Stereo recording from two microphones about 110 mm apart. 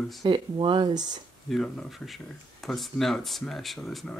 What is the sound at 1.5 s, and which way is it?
Speech, 5° left (ahead or behind).